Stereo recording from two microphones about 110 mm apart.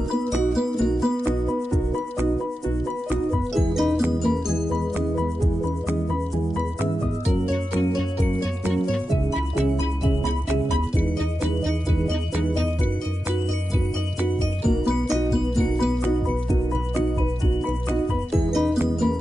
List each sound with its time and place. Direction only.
0.3 s music: 5° right (ahead or behind)
3.5 s music: centre (ahead or behind)
8.9 s music: 5° right (ahead or behind)
18.5 s music: centre (ahead or behind)